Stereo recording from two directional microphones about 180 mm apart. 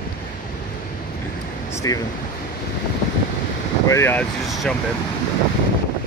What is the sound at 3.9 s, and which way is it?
Speech, 15° left (ahead or behind).